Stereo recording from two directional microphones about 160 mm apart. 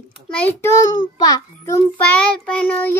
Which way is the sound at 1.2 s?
25° left (ahead or behind).